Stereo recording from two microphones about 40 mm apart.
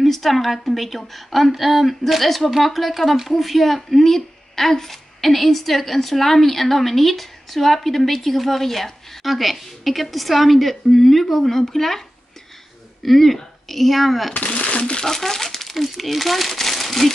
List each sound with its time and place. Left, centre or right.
0.0 s a woman's voice: centre
13.0 s a woman's voice: centre
14.3 s speech: left
15.0 s speech: centre